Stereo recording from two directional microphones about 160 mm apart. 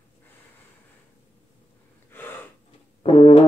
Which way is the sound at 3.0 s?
40° left (ahead or behind).